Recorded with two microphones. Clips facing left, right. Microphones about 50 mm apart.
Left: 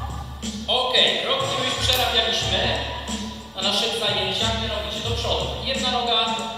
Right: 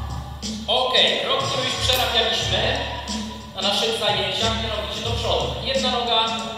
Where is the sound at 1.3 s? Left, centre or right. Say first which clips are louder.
Right 1 dB; centre.